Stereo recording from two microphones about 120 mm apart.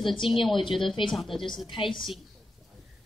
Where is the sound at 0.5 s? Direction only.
45° left (ahead or behind).